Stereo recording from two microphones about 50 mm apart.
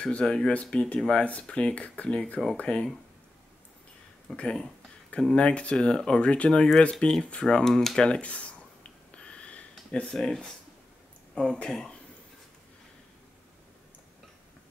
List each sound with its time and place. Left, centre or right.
0.2 s speech: centre
4.4 s speech: centre
8.2 s speech: left
9.1 s a sound: left
10.1 s speech: centre
11.3 s speech: centre